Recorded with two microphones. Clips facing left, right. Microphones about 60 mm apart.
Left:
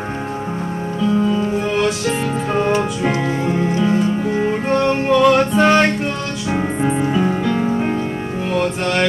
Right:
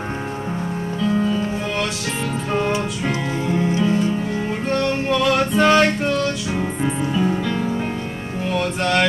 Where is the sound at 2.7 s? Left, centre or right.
Left.